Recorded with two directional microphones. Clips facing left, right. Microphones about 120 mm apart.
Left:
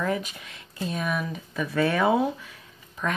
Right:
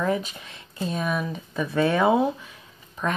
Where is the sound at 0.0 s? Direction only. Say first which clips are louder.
Right 3 dB; 25° right (ahead or behind).